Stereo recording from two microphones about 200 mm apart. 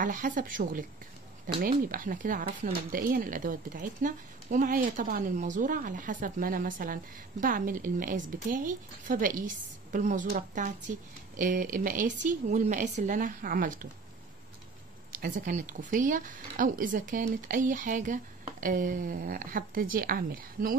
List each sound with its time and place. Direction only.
0.0 s speech: 40° right (ahead or behind)
15.1 s speech: 45° right (ahead or behind)